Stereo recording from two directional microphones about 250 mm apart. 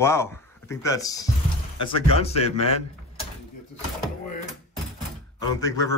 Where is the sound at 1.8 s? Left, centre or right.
Left.